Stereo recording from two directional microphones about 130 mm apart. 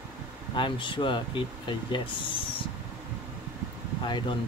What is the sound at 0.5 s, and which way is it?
Speech, 40° left (ahead or behind).